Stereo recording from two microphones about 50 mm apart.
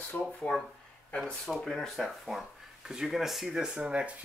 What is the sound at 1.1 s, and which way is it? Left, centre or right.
Speech, centre.